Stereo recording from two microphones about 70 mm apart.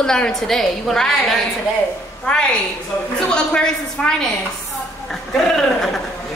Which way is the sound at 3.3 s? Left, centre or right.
Centre.